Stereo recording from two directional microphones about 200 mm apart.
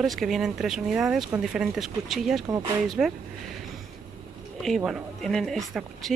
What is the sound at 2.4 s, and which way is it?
Speech, 15° right (ahead or behind).